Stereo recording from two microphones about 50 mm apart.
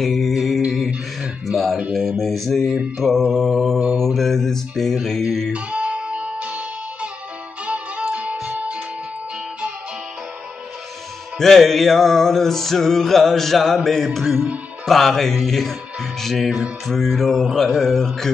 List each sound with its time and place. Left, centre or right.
0.0 s music: centre
0.7 s a sound: centre
1.9 s music: centre
3.0 s mantra: centre
5.5 s music: right
8.1 s music: right
11.3 s music: centre
14.9 s music: centre